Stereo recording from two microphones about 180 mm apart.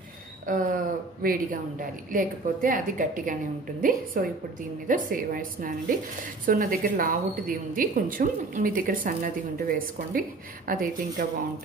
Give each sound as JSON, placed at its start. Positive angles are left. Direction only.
{"t": 0.5, "sound": "a woman's voice", "side_deg": -50}